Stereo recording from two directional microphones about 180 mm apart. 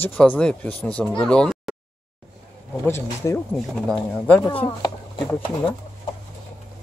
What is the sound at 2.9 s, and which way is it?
Speech, 15° left (ahead or behind).